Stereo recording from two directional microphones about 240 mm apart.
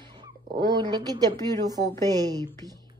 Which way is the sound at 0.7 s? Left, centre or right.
Centre.